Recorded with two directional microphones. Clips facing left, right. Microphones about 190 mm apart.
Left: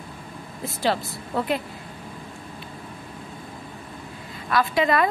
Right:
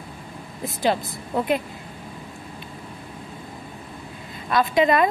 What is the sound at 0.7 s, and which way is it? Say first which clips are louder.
Speech: right 2 dB; 15° right (ahead or behind).